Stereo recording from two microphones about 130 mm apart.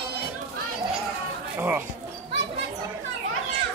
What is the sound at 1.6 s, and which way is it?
Speech, 15° right (ahead or behind).